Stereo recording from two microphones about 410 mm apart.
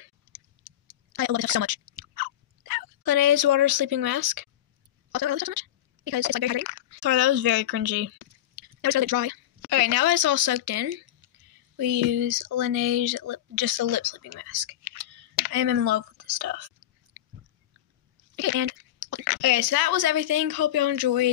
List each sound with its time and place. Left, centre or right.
1.1 s a sound: right
2.7 s speech: right
19.1 s speech: right